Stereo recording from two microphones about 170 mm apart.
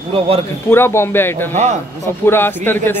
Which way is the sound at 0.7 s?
15° left (ahead or behind).